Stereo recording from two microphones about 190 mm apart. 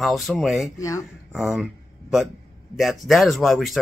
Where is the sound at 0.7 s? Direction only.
15° left (ahead or behind).